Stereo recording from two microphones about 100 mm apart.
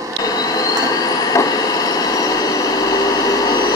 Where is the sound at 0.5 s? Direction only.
35° left (ahead or behind).